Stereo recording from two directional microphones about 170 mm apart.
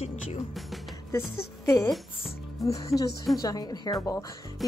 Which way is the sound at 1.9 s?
Centre (ahead or behind).